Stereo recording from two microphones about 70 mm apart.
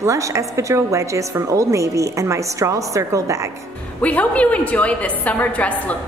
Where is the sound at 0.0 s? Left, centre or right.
Right.